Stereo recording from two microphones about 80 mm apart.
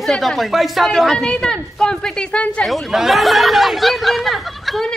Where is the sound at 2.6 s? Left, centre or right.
Centre.